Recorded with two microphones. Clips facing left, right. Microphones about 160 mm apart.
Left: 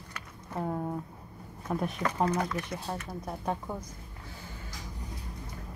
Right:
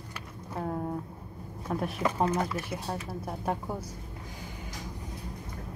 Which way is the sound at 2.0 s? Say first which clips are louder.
Right 2 dB; 25° right (ahead or behind).